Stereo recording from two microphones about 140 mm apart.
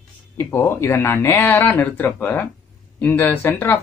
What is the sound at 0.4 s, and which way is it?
Speech, 15° left (ahead or behind).